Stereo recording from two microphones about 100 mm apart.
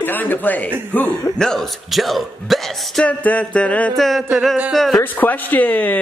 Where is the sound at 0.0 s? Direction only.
20° left (ahead or behind).